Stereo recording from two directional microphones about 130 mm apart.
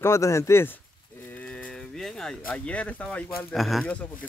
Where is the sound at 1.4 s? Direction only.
5° left (ahead or behind).